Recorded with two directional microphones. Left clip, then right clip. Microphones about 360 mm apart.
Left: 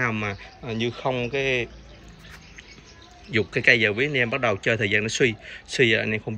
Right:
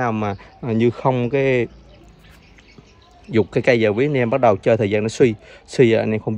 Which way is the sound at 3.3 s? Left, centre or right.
Centre.